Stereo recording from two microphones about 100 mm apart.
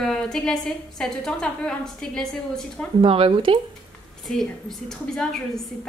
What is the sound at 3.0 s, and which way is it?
Speech, 60° right (ahead or behind).